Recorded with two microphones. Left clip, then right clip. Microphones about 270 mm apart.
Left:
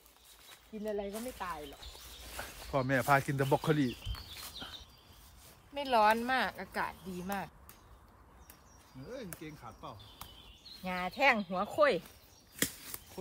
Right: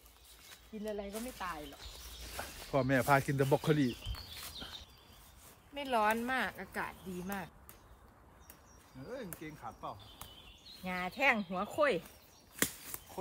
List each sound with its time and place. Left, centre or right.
0.5 s speech: left
2.3 s speech: centre
5.8 s speech: centre
9.4 s speech: centre
10.8 s speech: centre
12.7 s a sound: centre